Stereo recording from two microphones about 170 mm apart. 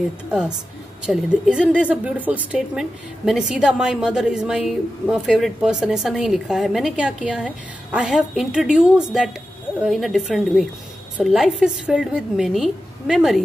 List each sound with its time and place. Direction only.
1.0 s a woman's voice: 5° right (ahead or behind)